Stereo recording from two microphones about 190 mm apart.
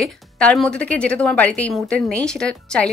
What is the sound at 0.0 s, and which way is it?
A woman's voice, 5° left (ahead or behind).